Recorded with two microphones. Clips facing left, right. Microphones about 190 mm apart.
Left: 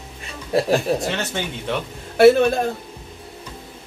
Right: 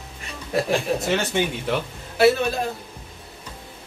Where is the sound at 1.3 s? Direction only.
15° right (ahead or behind).